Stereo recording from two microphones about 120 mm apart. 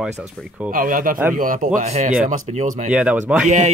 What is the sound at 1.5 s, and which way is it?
Speech, 90° right.